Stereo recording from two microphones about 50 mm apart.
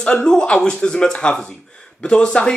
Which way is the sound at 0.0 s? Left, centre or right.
Centre.